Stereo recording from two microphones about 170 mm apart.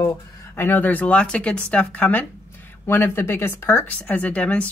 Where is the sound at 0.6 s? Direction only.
10° left (ahead or behind).